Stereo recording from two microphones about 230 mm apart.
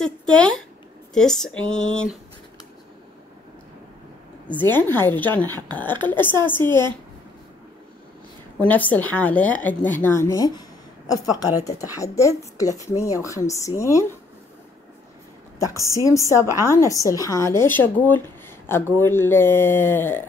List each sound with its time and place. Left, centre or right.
0.0 s speech: centre
4.5 s speech: centre
8.5 s speech: centre
15.8 s speech: centre